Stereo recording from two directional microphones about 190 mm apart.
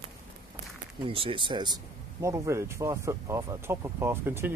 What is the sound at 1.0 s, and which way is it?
Speech, 30° right (ahead or behind).